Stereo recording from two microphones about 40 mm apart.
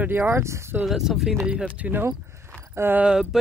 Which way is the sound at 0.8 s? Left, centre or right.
Centre.